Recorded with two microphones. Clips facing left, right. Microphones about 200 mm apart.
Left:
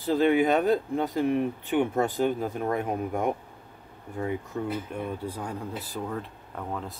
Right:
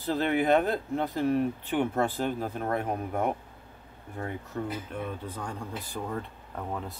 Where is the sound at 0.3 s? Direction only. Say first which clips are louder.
Even; 15° left (ahead or behind).